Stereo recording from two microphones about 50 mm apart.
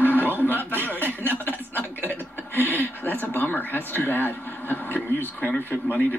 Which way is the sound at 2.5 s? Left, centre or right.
Left.